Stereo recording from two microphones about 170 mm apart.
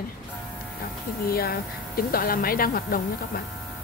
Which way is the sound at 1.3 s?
60° left (ahead or behind).